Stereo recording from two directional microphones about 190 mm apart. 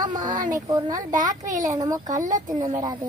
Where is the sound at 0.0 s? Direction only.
25° right (ahead or behind).